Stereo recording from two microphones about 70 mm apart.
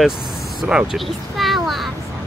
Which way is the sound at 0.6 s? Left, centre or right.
Centre.